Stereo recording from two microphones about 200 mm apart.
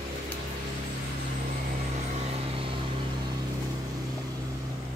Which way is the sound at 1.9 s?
30° right (ahead or behind).